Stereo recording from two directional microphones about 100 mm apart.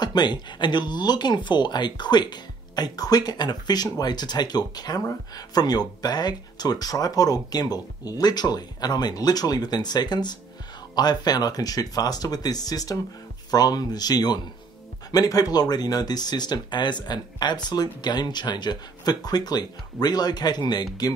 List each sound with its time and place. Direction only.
0.0 s speech: 45° left (ahead or behind)